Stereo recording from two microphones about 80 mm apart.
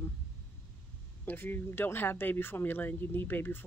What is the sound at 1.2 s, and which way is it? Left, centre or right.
Speech, left.